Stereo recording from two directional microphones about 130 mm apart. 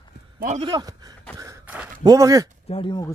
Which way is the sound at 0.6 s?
35° right (ahead or behind).